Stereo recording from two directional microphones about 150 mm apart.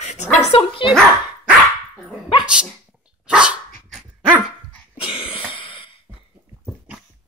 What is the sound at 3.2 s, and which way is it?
Dog, 5° right (ahead or behind).